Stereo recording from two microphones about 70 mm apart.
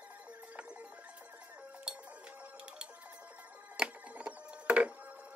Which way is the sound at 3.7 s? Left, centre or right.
Centre.